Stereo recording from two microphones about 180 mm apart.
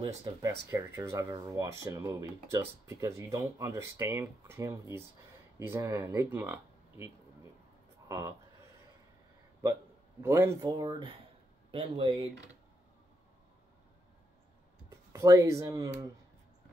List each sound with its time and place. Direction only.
0.0 s speech: 20° right (ahead or behind)
8.1 s speech: 20° right (ahead or behind)
10.2 s speech: 15° right (ahead or behind)
15.1 s speech: 15° right (ahead or behind)